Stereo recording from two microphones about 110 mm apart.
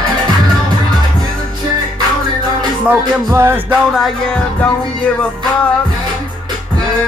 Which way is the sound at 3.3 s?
20° right (ahead or behind).